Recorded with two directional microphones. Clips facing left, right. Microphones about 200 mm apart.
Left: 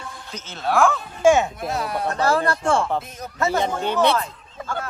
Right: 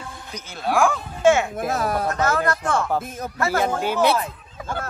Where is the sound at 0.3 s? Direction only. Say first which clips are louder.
Even; 15° right (ahead or behind).